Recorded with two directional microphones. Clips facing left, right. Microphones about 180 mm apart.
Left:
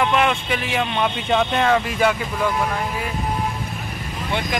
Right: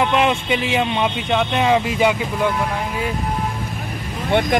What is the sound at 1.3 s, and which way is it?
Speech, 5° right (ahead or behind).